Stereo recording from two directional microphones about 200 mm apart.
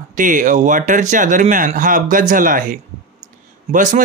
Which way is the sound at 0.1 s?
40° right (ahead or behind).